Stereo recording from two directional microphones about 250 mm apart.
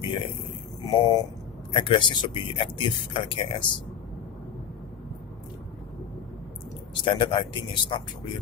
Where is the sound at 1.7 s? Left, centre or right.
Centre.